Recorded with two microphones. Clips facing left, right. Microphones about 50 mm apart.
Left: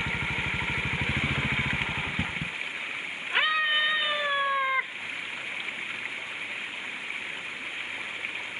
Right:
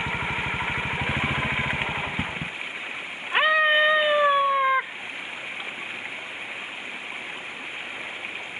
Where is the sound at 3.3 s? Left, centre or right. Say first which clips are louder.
Right 6 dB; right.